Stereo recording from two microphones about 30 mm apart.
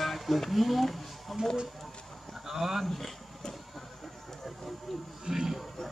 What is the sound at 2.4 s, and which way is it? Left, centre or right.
Speech, centre.